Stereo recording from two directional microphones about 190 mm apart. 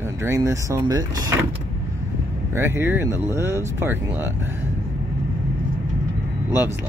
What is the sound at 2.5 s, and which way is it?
Speech, 10° right (ahead or behind).